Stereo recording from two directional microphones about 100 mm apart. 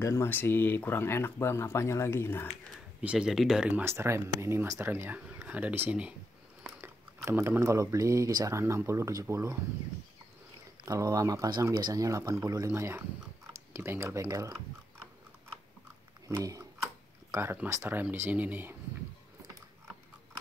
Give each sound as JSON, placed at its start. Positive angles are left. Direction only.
{"t": 0.0, "sound": "speech", "side_deg": 25}
{"t": 3.0, "sound": "speech", "side_deg": -10}
{"t": 3.8, "sound": "speech", "side_deg": -25}
{"t": 6.8, "sound": "speech", "side_deg": -25}
{"t": 10.9, "sound": "speech", "side_deg": -35}
{"t": 17.3, "sound": "speech", "side_deg": -25}